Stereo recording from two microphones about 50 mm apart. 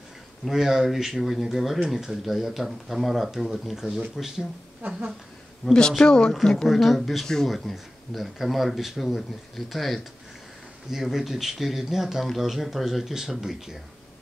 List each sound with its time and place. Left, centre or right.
0.5 s speech: centre
5.7 s speech: centre
6.7 s speech: centre